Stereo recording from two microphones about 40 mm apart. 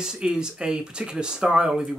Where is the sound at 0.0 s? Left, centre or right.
Centre.